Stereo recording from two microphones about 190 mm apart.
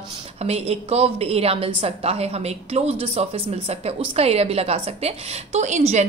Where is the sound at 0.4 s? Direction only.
35° right (ahead or behind).